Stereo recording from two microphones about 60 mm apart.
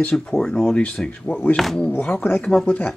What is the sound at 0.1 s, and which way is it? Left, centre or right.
Speech, centre.